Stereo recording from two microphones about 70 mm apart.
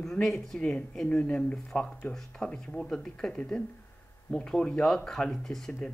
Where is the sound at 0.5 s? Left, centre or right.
Centre.